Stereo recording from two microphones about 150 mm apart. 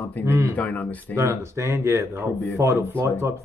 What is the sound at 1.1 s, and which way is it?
Speech, 15° right (ahead or behind).